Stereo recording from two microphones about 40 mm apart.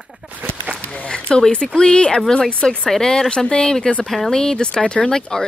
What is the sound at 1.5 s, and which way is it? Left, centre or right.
A woman's voice, left.